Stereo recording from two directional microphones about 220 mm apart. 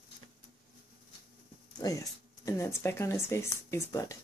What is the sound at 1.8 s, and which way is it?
Speech, 15° left (ahead or behind).